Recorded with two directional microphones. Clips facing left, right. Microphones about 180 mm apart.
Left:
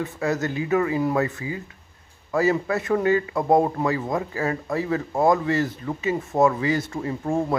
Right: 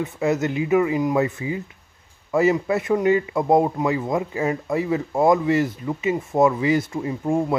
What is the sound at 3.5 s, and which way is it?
Speech, 10° right (ahead or behind).